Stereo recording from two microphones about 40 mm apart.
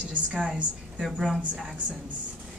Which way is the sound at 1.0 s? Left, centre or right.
Centre.